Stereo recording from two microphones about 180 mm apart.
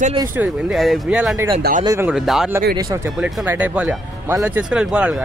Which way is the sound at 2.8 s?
20° right (ahead or behind).